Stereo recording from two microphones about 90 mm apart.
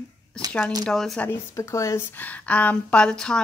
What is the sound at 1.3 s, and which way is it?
Speech, 35° left (ahead or behind).